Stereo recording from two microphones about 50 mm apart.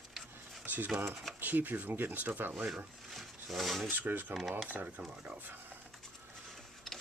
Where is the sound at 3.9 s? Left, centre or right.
Right.